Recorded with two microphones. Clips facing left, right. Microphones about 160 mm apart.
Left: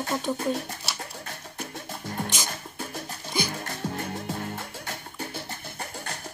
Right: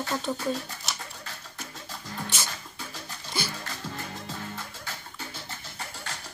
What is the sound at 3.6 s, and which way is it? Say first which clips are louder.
Music: left 5 dB; 55° left (ahead or behind).